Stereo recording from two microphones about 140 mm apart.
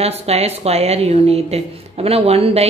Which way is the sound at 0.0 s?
45° right (ahead or behind).